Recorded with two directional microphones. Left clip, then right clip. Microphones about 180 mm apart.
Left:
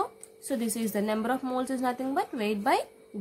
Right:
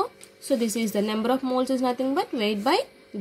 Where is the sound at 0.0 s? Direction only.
15° right (ahead or behind).